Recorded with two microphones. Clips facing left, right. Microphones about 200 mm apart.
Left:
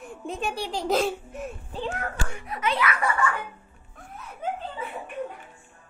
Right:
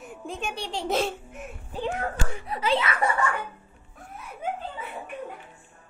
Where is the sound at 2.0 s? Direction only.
30° right (ahead or behind).